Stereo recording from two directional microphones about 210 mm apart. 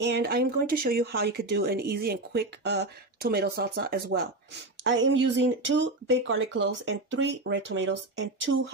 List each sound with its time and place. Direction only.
0.0 s speech: 50° right (ahead or behind)
4.8 s speech: 60° right (ahead or behind)